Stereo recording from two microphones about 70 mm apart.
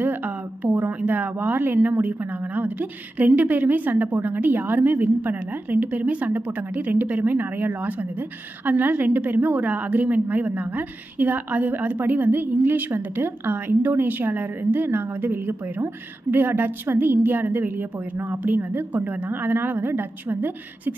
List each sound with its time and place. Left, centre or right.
0.0 s a woman's voice: right